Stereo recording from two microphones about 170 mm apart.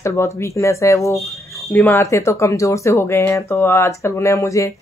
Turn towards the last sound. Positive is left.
turn(degrees=20)  # may be behind; listen again after turning